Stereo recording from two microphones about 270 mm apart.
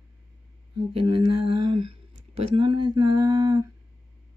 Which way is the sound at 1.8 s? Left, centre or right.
Right.